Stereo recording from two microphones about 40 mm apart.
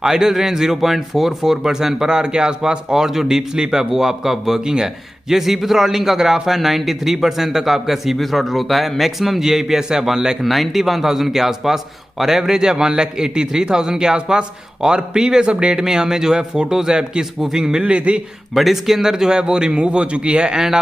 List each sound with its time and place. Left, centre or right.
0.0 s speech: centre
10.4 s speech: centre; by 15.8 s right
15.8 s speech: centre
17.8 s a man's voice: right
18.5 s a man's voice: centre; by 20.5 s right
20.5 s speech: centre